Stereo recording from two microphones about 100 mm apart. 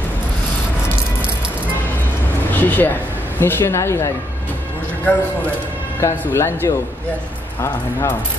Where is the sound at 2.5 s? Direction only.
15° left (ahead or behind).